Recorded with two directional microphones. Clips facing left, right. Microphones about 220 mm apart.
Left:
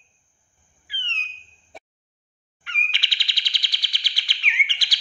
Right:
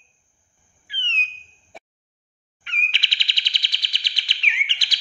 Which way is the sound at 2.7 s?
20° right (ahead or behind).